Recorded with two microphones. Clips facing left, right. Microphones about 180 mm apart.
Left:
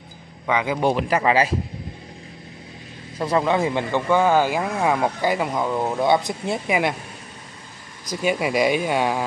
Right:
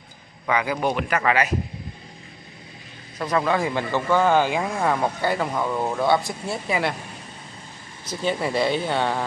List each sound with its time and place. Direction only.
0.5 s a man's voice: 20° left (ahead or behind)
3.3 s speech: 25° left (ahead or behind)
8.1 s speech: 10° left (ahead or behind)